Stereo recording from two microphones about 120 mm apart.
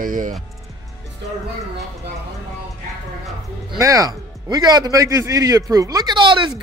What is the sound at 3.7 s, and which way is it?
A man's voice, 30° right (ahead or behind).